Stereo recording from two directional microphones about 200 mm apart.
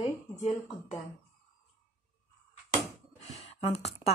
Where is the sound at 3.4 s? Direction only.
30° left (ahead or behind).